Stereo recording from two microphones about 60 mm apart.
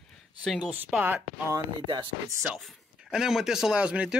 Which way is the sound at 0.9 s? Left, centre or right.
Right.